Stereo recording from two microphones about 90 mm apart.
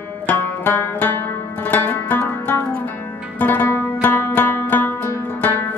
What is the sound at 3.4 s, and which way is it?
Zither, 20° left (ahead or behind).